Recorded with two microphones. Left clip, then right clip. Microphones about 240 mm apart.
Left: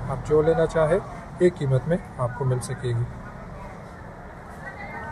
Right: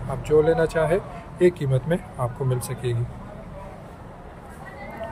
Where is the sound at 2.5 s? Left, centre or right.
Right.